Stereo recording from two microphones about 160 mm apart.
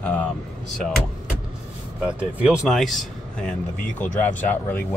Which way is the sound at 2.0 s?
5° right (ahead or behind).